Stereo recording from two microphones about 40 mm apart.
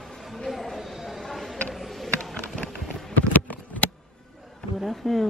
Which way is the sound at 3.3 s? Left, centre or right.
Left.